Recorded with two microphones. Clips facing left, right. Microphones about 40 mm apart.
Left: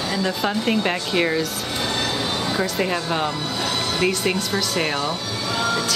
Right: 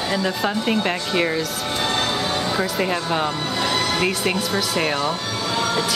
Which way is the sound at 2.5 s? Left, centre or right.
Centre.